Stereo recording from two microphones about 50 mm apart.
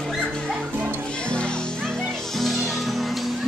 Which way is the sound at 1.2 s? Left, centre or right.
Centre.